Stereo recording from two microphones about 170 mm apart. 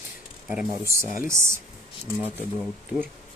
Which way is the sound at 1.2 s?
15° right (ahead or behind).